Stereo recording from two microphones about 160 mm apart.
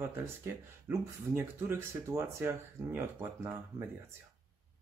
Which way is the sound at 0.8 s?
15° right (ahead or behind).